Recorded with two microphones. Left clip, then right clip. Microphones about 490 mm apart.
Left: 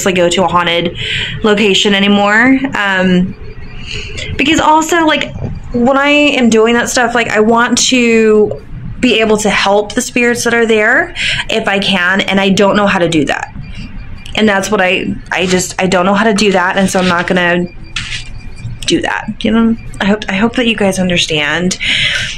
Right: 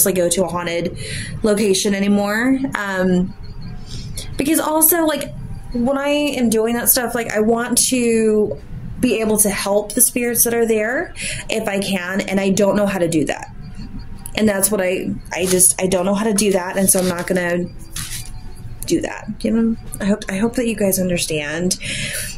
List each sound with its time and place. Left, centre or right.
0.0 s speech: right
0.7 s speech: right
1.6 s speech: right
4.5 s speech: right
19.0 s speech: right